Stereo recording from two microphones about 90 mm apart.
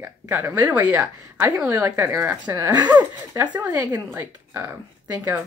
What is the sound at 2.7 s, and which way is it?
Speech, 50° right (ahead or behind).